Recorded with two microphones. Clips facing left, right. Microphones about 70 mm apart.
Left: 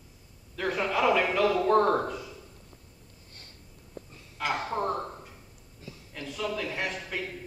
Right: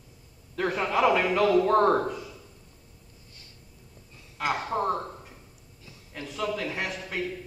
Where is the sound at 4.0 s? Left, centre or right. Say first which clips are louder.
Left 15 dB; left.